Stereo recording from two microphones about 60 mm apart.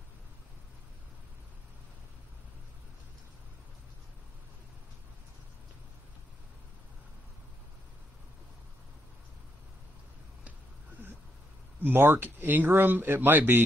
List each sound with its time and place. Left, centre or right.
11.8 s speech: right